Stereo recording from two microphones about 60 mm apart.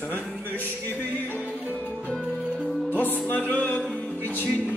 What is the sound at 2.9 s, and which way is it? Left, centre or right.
Music, left.